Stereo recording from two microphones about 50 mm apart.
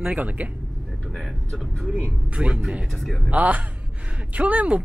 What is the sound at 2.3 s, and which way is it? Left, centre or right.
Speech, right.